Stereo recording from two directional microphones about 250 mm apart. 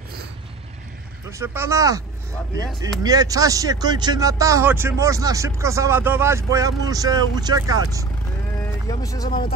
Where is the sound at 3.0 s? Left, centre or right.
Centre.